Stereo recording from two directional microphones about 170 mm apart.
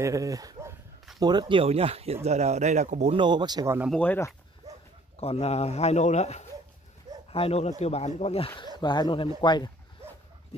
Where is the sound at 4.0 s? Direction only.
15° left (ahead or behind).